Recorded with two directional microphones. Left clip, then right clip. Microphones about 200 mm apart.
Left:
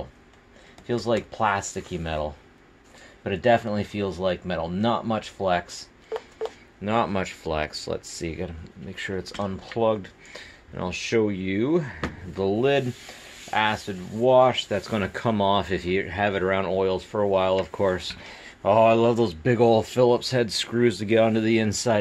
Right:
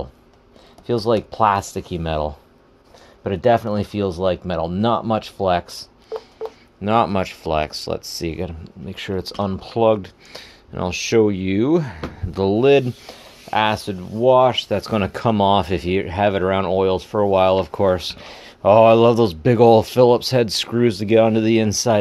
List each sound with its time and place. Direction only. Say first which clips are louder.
0.8 s speech: right 6 dB; 50° right (ahead or behind)
6.0 s wail: right 2 dB; 5° right (ahead or behind)
6.8 s speech: right 7 dB; 40° right (ahead or behind)